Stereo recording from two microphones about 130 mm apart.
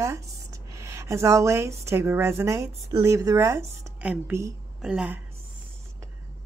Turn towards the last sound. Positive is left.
turn(degrees=-10)  # may be behind; listen again after turning